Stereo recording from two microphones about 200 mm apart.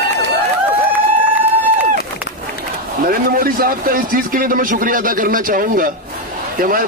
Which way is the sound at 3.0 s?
45° right (ahead or behind).